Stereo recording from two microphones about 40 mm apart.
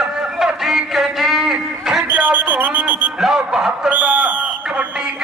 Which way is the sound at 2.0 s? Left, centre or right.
Right.